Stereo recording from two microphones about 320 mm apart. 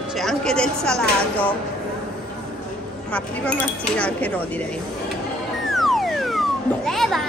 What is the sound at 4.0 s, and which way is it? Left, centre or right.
Speech, centre.